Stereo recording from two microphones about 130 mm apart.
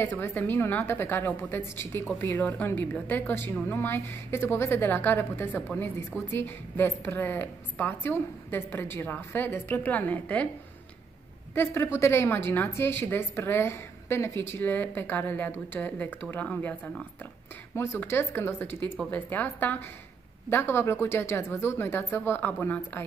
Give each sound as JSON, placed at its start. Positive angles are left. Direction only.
{"t": 0.0, "sound": "a woman's voice", "side_deg": 15}
{"t": 11.5, "sound": "a woman's voice", "side_deg": 20}